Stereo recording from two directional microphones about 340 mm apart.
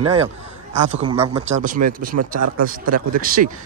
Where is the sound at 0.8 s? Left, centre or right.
Centre.